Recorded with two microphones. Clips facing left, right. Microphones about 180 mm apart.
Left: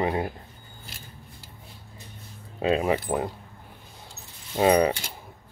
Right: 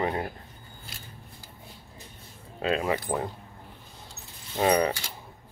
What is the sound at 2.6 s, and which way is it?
Speech, 20° left (ahead or behind).